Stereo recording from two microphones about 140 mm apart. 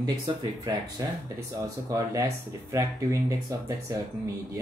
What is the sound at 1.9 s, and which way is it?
Speech, 25° right (ahead or behind).